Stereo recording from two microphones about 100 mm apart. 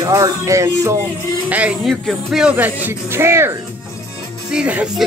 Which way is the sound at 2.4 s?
15° right (ahead or behind).